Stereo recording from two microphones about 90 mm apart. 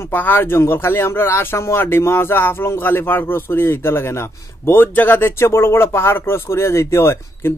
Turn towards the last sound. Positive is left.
turn(degrees=25)  # may be behind; listen again after turning